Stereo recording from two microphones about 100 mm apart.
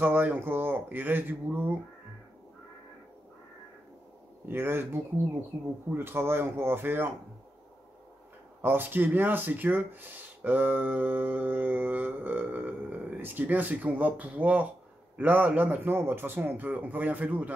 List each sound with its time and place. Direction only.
0.0 s speech: 20° right (ahead or behind)
4.5 s speech: 25° right (ahead or behind)
8.6 s a man's voice: 20° right (ahead or behind)